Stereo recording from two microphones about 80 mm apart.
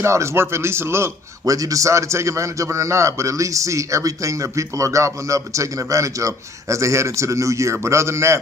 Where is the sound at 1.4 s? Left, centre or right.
Right.